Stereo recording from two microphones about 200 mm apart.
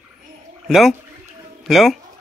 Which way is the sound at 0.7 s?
Centre (ahead or behind).